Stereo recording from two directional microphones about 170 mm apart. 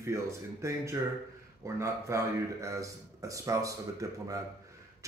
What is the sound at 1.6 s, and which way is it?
A man's voice, 15° right (ahead or behind).